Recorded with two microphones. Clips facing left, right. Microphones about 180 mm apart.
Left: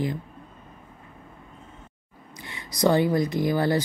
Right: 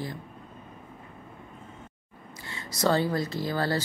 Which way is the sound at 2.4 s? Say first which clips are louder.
Left 5 dB; 15° left (ahead or behind).